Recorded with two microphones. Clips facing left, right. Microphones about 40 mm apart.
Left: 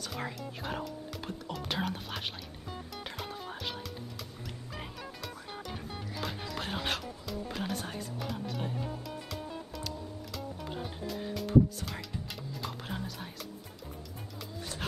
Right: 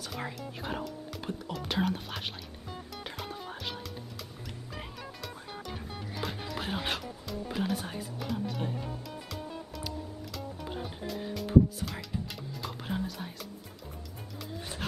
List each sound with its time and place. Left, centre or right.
0.0 s speech: centre
3.0 s music: centre